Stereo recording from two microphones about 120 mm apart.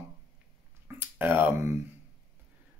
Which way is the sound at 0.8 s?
15° right (ahead or behind).